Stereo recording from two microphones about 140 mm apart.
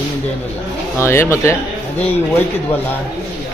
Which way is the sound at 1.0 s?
20° left (ahead or behind).